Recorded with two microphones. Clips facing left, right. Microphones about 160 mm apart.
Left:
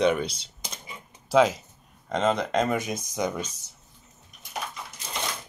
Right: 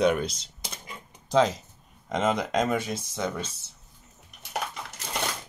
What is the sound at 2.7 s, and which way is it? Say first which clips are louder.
Speech: left 1 dB; 15° left (ahead or behind).